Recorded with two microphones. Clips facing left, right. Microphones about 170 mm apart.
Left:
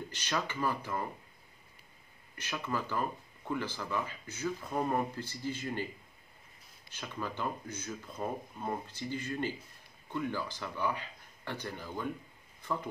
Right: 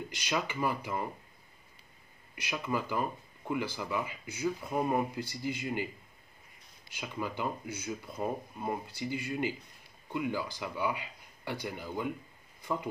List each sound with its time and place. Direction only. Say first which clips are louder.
0.1 s speech: right 2 dB; 10° right (ahead or behind)
2.3 s speech: right 2 dB; 10° right (ahead or behind)
6.9 s speech: right 2 dB; 10° right (ahead or behind)